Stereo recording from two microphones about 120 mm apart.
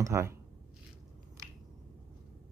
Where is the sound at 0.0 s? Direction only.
25° right (ahead or behind).